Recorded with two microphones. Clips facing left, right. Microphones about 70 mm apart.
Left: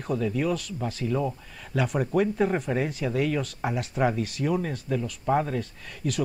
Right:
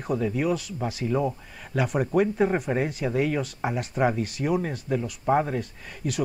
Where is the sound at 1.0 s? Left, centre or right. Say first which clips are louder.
Right 2 dB; centre.